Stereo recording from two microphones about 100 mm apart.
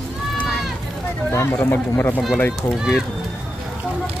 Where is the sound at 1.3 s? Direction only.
25° left (ahead or behind).